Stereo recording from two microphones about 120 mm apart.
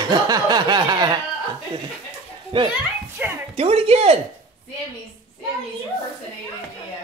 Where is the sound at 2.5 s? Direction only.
45° right (ahead or behind).